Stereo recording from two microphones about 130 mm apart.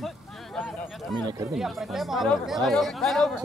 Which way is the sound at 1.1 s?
30° right (ahead or behind).